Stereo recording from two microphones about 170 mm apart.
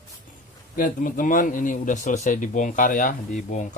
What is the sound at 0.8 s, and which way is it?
A man's voice, 50° left (ahead or behind).